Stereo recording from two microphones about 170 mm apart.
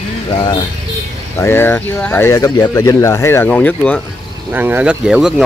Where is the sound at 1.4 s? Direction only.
15° left (ahead or behind).